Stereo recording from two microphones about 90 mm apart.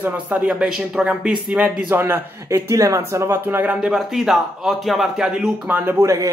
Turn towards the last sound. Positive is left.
turn(degrees=-25)  # may be behind; listen again after turning